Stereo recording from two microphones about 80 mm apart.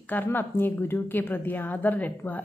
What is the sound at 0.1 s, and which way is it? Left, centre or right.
A woman's voice, left.